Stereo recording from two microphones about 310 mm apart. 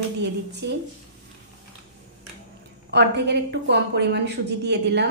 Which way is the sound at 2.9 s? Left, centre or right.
Right.